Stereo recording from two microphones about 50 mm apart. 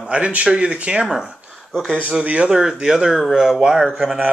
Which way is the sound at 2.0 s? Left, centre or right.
Right.